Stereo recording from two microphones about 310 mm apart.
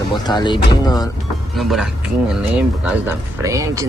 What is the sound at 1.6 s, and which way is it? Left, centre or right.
Speech, centre.